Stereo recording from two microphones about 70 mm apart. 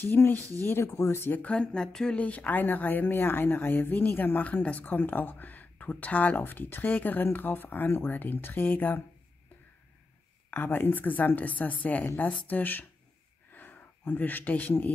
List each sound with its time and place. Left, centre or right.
0.0 s speech: left
1.3 s speech: centre
2.1 s a woman's voice: left
10.5 s a woman's voice: left
13.5 s a sound: left